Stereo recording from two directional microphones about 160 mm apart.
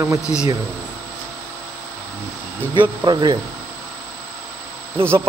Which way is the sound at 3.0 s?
25° right (ahead or behind).